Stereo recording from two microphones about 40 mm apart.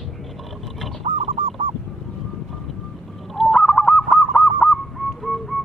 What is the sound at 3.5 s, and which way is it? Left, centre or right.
Honk, centre.